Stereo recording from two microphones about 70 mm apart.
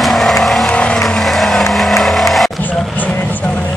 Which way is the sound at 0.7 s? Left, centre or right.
Centre.